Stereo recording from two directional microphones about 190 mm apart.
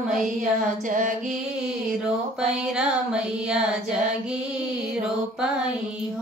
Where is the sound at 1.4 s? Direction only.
5° right (ahead or behind).